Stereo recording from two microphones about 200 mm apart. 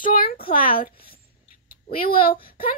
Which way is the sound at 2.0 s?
45° left (ahead or behind).